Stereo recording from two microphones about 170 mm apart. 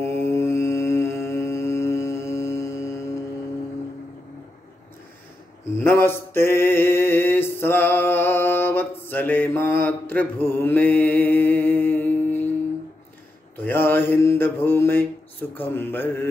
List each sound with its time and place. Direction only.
0.0 s mantra: 15° left (ahead or behind)
5.8 s mantra: 15° left (ahead or behind)
13.6 s mantra: 10° left (ahead or behind)
15.5 s speech: 10° left (ahead or behind)